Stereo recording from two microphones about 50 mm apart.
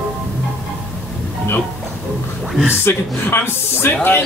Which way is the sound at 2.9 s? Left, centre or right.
Left.